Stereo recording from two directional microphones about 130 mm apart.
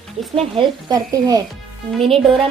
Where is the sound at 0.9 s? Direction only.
30° right (ahead or behind).